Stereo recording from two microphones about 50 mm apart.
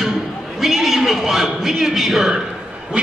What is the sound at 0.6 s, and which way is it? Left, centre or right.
A man's voice, centre.